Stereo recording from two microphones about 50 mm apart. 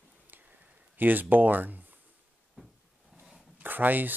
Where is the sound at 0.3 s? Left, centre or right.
Right.